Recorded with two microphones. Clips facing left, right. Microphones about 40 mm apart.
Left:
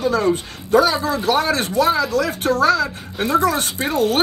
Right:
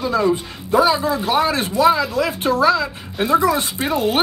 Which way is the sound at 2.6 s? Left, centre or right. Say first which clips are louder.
Even; right.